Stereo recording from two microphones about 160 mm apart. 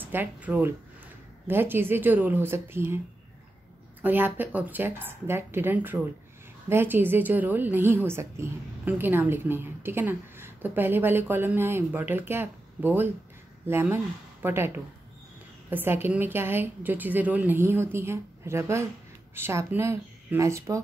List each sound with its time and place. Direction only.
0.0 s a woman's voice: 10° right (ahead or behind)
4.0 s a woman's voice: 10° right (ahead or behind)
15.7 s a woman's voice: 15° right (ahead or behind)